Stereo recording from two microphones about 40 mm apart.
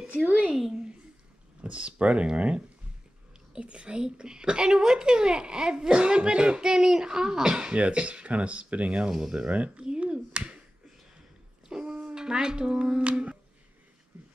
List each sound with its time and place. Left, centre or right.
0.3 s speech: right
1.6 s speech: right
7.7 s speech: right
11.7 s speech: right